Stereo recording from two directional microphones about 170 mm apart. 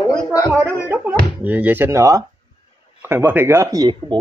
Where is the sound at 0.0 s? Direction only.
25° left (ahead or behind).